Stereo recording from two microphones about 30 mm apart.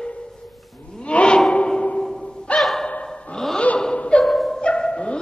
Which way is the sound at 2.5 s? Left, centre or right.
Left.